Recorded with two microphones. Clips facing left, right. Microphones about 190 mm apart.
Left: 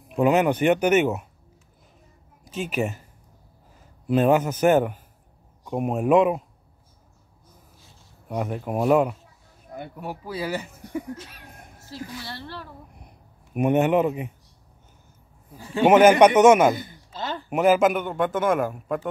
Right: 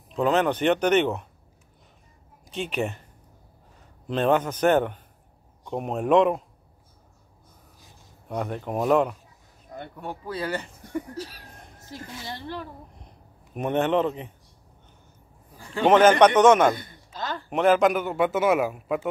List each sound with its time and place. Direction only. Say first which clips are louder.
0.1 s a man's voice: left 3 dB; 10° left (ahead or behind)
2.5 s a man's voice: left 2 dB; 5° left (ahead or behind)
4.1 s a man's voice: left 3 dB; 10° left (ahead or behind)
8.3 s a man's voice: left 2 dB; 5° left (ahead or behind)
11.1 s a sound: right 8 dB; 35° right (ahead or behind)
11.8 s a woman's voice: left 3 dB; 20° right (ahead or behind)
13.0 s a sound: even; 10° left (ahead or behind)
15.6 s a man's voice: left 2 dB; 15° left (ahead or behind); by 19.0 s 5° right (ahead or behind)